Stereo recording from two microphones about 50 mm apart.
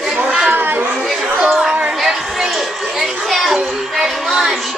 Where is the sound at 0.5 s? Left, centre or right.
Right.